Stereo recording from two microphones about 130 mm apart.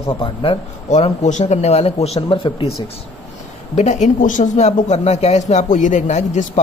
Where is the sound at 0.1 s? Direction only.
45° left (ahead or behind).